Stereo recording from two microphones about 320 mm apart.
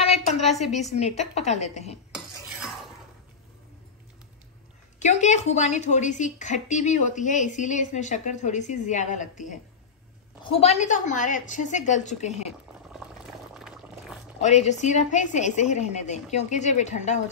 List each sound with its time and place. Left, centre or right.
0.7 s a woman's voice: left
2.1 s cutlery: centre
4.9 s a woman's voice: left
13.6 s boiling: centre
14.4 s a woman's voice: left